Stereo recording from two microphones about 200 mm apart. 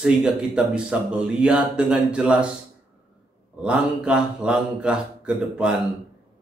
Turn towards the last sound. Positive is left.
turn(degrees=-5)  # may be behind; listen again after turning